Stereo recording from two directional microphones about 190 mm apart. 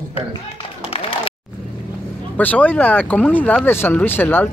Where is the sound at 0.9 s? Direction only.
30° left (ahead or behind).